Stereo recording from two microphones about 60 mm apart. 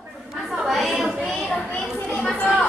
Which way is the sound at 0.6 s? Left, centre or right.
Centre.